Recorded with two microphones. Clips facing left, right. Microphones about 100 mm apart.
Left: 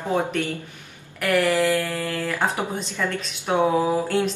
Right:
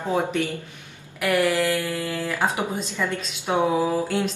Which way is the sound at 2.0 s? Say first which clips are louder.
Even; 10° right (ahead or behind).